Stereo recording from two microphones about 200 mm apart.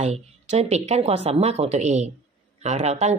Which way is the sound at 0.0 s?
30° right (ahead or behind).